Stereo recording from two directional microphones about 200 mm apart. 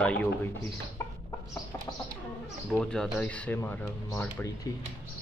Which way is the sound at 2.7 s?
5° left (ahead or behind).